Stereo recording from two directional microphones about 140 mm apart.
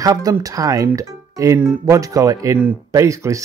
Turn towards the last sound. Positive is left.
turn(degrees=-20)  # may be behind; listen again after turning